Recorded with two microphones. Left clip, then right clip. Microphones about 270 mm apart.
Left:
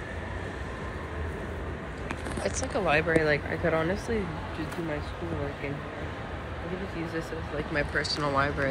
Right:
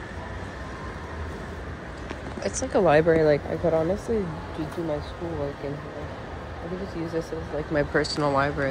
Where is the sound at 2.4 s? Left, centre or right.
Right.